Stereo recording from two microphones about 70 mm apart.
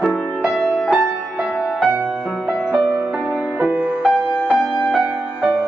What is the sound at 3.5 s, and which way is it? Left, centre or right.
Music, right.